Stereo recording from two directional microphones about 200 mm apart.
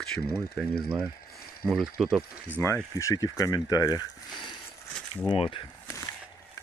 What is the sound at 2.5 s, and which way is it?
Speech, 10° left (ahead or behind).